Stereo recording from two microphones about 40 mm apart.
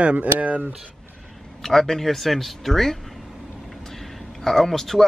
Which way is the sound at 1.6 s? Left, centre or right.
Centre.